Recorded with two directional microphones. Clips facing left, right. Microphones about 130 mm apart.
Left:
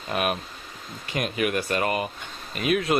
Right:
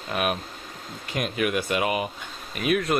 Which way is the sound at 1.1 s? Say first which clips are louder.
Even; centre (ahead or behind).